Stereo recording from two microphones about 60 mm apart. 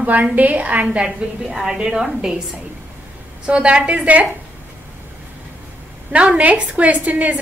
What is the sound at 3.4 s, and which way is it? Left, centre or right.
Speech, centre.